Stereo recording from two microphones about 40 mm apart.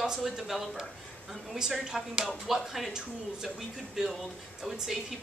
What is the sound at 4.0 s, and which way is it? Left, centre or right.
Speech, centre.